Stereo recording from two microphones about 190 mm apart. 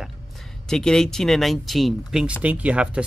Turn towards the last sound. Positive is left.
turn(degrees=-5)  # may be behind; listen again after turning